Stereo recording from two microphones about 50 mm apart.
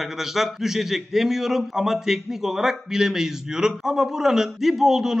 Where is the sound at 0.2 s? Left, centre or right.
Centre.